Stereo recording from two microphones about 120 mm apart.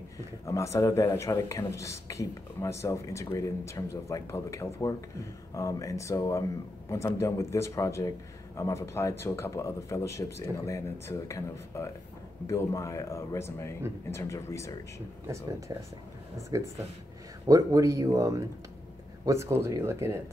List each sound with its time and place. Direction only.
0.5 s a man's voice: 25° left (ahead or behind)
15.7 s speech: 30° right (ahead or behind)